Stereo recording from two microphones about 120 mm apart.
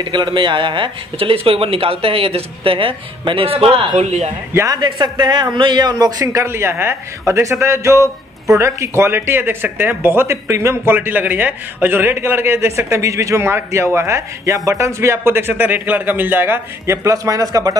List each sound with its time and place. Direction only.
0.0 s speech: 40° right (ahead or behind)
3.9 s a man's voice: 70° right (ahead or behind)
4.6 s a man's voice: 30° right (ahead or behind)